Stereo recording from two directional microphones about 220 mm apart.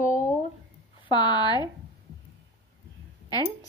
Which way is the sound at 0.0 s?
35° left (ahead or behind).